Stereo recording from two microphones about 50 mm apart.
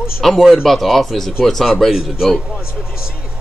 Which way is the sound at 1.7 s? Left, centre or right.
Centre.